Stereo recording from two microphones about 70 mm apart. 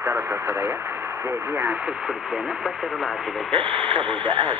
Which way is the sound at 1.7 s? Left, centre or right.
Centre.